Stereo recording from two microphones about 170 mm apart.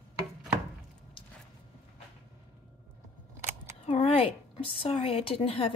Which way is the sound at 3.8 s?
35° left (ahead or behind).